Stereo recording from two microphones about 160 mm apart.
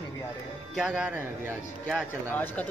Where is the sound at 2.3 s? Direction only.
10° left (ahead or behind).